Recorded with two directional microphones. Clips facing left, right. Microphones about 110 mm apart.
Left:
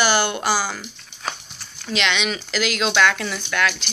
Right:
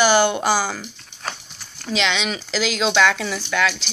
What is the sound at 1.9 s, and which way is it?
Speech, 30° right (ahead or behind).